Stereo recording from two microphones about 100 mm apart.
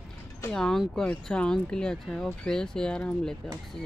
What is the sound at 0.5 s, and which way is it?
Speech, 5° left (ahead or behind).